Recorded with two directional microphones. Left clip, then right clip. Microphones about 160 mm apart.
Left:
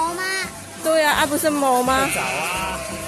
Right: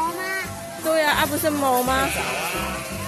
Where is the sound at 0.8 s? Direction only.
25° left (ahead or behind).